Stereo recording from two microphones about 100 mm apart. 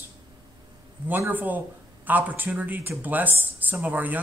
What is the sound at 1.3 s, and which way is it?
A man's voice, 20° right (ahead or behind).